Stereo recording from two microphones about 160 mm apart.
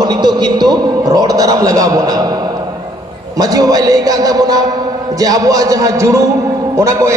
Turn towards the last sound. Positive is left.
turn(degrees=-20)  # may be behind; listen again after turning